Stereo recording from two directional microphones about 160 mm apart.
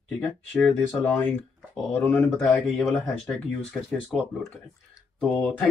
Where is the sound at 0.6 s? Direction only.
10° left (ahead or behind).